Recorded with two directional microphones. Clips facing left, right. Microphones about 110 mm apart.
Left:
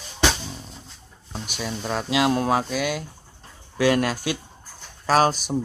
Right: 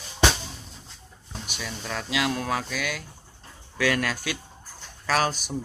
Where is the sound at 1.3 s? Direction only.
30° left (ahead or behind).